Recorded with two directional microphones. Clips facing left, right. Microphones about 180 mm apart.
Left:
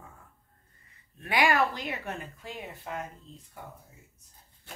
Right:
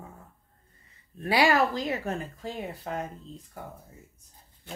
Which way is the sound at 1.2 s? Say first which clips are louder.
Right 3 dB; 35° right (ahead or behind).